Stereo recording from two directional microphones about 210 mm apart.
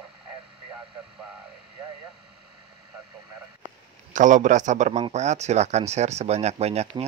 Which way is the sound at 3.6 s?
35° right (ahead or behind).